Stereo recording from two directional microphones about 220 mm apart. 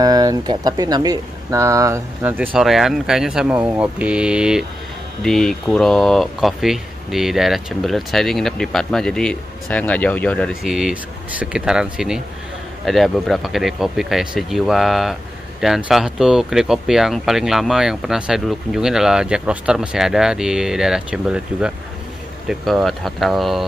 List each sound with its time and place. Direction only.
0.0 s speech: 15° right (ahead or behind); by 23.6 s centre (ahead or behind)